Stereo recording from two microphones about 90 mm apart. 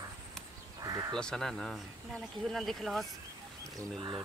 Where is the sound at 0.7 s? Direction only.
45° right (ahead or behind).